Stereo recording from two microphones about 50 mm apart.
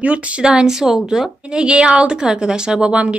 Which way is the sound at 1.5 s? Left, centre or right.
Right.